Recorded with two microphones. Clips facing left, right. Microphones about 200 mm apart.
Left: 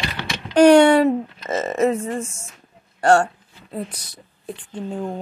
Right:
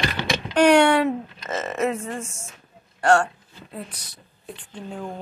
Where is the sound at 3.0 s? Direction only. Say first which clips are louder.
Left 3 dB; 35° left (ahead or behind).